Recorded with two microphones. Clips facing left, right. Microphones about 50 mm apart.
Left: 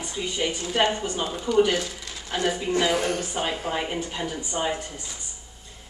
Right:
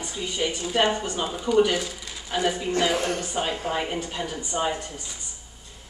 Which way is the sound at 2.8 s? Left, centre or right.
Centre.